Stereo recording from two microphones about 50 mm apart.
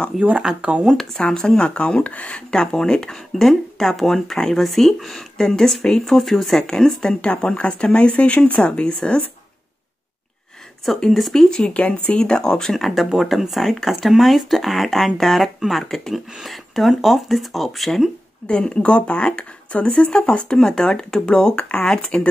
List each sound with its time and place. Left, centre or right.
0.1 s speech: centre
0.6 s speech: right
0.8 s speech: centre
1.2 s speech: centre
10.9 s speech: centre
11.5 s speech: centre
12.7 s speech: centre
18.5 s speech: centre